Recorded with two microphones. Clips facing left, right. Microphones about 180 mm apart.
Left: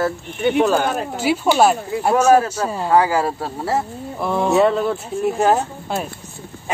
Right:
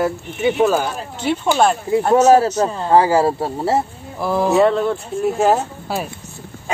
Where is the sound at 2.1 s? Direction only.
25° right (ahead or behind).